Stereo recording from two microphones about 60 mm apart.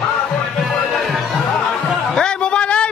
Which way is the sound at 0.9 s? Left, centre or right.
Centre.